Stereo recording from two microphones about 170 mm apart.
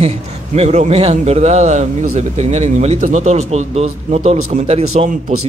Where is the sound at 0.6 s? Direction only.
40° right (ahead or behind).